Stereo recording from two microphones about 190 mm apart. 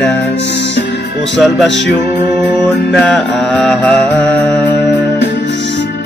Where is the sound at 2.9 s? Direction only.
5° left (ahead or behind).